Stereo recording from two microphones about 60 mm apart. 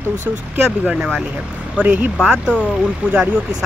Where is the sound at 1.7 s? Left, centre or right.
Right.